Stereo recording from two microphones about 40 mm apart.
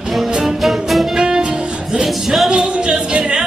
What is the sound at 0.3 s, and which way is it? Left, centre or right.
Music, centre.